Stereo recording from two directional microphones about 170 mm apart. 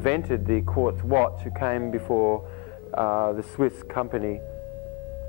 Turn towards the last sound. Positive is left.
turn(degrees=-35)  # may be behind; listen again after turning